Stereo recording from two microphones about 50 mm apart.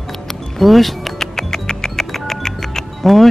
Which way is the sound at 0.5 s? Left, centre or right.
Centre.